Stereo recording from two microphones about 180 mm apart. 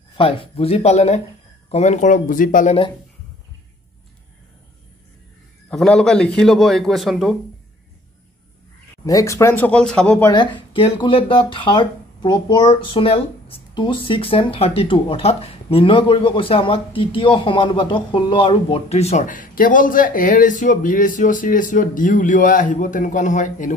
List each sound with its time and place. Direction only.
0.1 s speech: 30° left (ahead or behind)
5.7 s a man's voice: 5° left (ahead or behind)
9.0 s speech: 15° left (ahead or behind)
10.2 s speech: 25° left (ahead or behind); by 23.7 s 45° left (ahead or behind)